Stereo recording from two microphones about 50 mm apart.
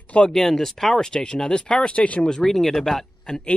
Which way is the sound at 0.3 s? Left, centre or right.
Centre.